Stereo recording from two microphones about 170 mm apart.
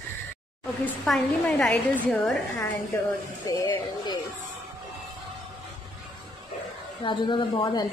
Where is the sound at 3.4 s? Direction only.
25° left (ahead or behind).